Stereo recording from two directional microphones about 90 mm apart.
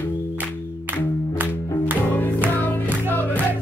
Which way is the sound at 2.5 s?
20° left (ahead or behind).